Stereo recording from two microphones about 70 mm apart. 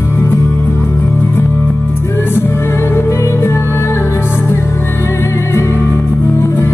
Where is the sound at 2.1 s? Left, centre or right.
Left.